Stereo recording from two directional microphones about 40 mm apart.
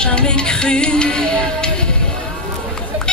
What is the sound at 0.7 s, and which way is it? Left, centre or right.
Music, left.